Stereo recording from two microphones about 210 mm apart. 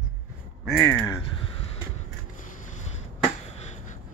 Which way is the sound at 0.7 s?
5° left (ahead or behind).